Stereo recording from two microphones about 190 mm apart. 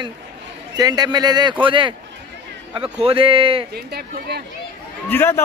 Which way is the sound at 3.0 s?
30° right (ahead or behind).